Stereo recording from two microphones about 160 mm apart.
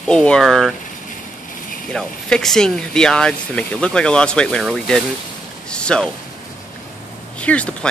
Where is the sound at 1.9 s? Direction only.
5° left (ahead or behind).